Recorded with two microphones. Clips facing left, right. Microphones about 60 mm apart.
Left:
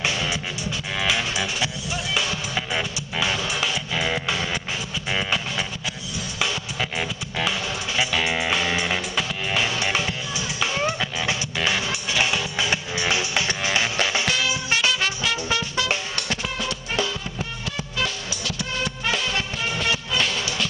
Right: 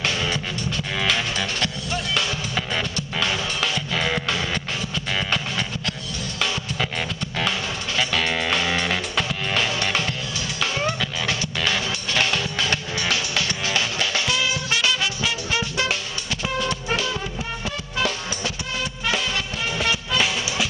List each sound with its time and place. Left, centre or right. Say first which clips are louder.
0.0 s music: right 1 dB; centre
20.2 s music: right 2 dB; centre